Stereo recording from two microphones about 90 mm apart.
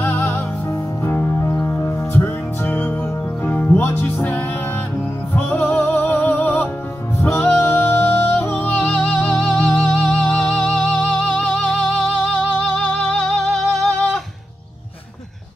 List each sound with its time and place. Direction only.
0.0 s music: 20° left (ahead or behind)